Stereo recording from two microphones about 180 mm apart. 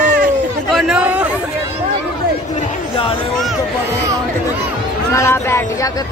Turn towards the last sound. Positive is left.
turn(degrees=15)  # may be behind; listen again after turning